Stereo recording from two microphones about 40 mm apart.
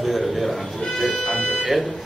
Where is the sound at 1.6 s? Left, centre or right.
Centre.